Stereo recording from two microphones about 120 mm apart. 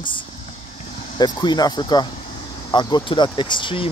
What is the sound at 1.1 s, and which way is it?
Speech, 40° left (ahead or behind).